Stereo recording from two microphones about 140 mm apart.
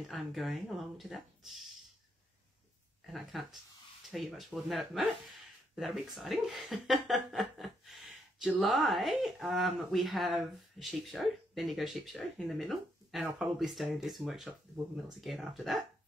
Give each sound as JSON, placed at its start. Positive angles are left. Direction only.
{"t": 0.0, "sound": "speech", "side_deg": 0}
{"t": 3.1, "sound": "speech", "side_deg": 0}